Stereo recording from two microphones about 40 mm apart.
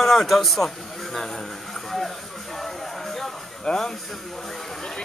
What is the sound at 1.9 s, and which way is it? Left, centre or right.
Music, centre.